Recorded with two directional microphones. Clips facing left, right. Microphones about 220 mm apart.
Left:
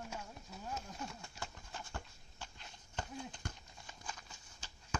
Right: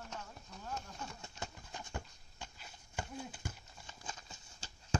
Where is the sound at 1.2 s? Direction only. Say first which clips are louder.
Right 2 dB; 20° right (ahead or behind).